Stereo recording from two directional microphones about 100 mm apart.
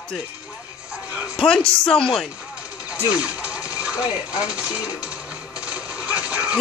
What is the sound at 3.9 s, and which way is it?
Speech, 35° left (ahead or behind).